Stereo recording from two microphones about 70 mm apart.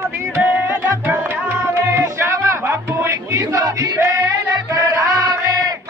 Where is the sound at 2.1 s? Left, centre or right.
Right.